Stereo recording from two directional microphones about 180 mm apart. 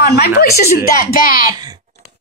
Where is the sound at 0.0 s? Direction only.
60° left (ahead or behind).